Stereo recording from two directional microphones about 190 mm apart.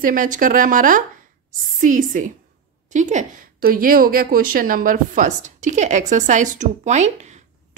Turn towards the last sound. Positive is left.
turn(degrees=-40)  # may be behind; listen again after turning